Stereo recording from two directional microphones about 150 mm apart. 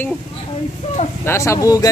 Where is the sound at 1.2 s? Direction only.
20° left (ahead or behind).